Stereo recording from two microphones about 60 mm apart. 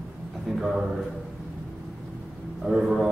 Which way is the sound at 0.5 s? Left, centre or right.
Centre.